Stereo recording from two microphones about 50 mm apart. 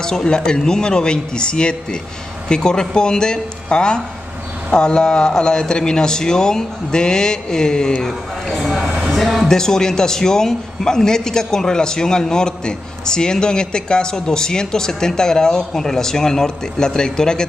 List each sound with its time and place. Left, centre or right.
0.0 s a man's voice: centre
8.5 s a sound: centre
9.5 s a man's voice: centre